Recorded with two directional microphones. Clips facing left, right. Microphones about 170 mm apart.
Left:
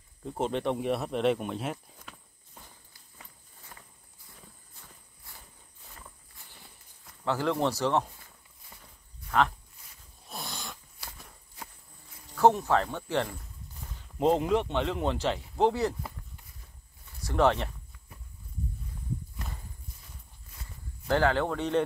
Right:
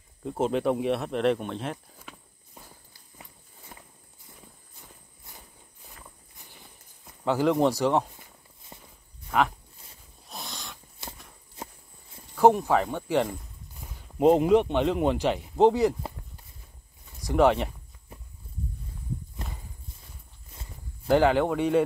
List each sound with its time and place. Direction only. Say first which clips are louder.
0.2 s speech: right 4 dB; 5° right (ahead or behind)
2.0 s walk: right 3 dB; 10° right (ahead or behind)
3.7 s walk: right 3 dB; 20° right (ahead or behind)
5.3 s walk: right 3 dB; 20° right (ahead or behind)
7.1 s walk: right 5 dB; 15° right (ahead or behind)
10.3 s a sound: left 1 dB; centre (ahead or behind)
11.0 s a sound: right 4 dB; 25° right (ahead or behind)
12.4 s speech: right 3 dB; 15° right (ahead or behind)
17.2 s speech: right 4 dB; 15° right (ahead or behind)
21.1 s speech: right 5 dB; 15° right (ahead or behind)